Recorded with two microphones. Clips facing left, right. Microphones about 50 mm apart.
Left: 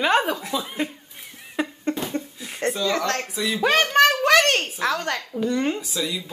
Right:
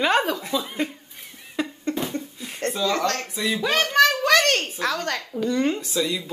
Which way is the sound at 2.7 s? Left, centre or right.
Centre.